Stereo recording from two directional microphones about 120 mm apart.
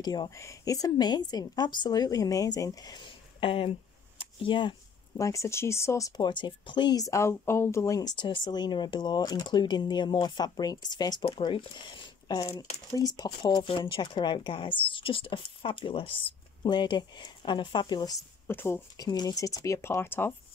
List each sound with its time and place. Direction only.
0.0 s speech: 35° left (ahead or behind)
3.3 s speech: 50° left (ahead or behind)
5.1 s speech: 25° left (ahead or behind)
11.2 s speech: 45° left (ahead or behind)
18.5 s speech: 20° left (ahead or behind)
18.9 s speech: 35° left (ahead or behind)